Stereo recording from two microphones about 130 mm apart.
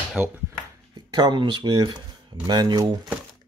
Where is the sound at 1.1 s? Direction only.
35° right (ahead or behind).